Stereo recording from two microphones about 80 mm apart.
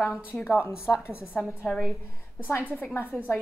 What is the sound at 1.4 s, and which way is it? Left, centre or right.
Speech, centre.